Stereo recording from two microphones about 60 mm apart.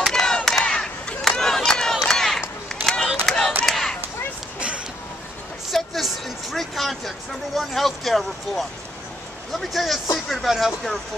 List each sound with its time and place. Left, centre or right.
0.0 s battle cry: centre
1.3 s a sound: centre
2.7 s run: centre
3.3 s battle cry: centre
3.6 s a sound: centre
4.6 s vehicle: centre
5.7 s vehicle: centre
9.5 s speech: centre